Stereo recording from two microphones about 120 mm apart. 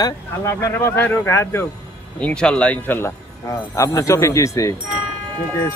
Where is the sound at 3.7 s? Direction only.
25° left (ahead or behind).